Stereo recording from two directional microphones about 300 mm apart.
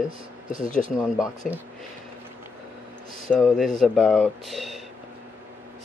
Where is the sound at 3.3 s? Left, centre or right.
Centre.